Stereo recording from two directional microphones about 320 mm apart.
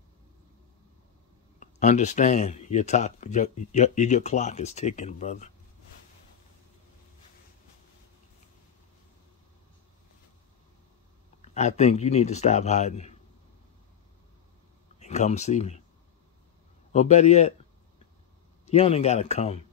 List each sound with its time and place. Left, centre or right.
1.6 s speech: left
11.4 s speech: centre
15.0 s speech: left
16.9 s a sound: left
18.7 s speech: centre